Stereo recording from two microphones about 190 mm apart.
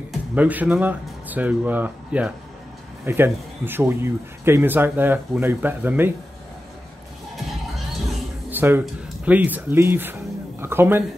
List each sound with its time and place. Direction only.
0.1 s speech: 5° right (ahead or behind)
7.3 s music: centre (ahead or behind)
8.5 s speech: 10° right (ahead or behind)